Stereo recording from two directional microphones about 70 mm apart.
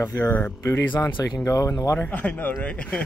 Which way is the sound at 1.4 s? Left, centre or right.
Left.